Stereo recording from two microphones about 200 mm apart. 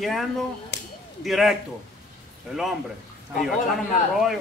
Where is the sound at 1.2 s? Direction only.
Centre (ahead or behind).